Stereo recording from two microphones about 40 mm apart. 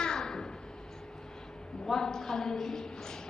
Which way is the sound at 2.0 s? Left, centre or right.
Centre.